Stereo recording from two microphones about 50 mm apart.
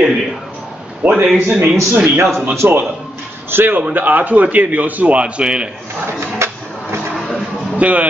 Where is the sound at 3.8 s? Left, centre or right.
Right; by 5.7 s centre.